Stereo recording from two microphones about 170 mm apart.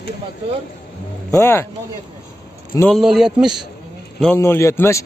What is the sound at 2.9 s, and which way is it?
Speech, centre (ahead or behind).